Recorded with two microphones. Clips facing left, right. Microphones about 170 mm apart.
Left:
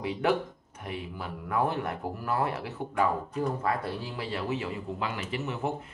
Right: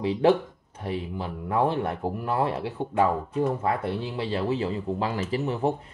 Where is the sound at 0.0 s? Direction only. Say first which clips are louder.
Right 6 dB; 30° right (ahead or behind).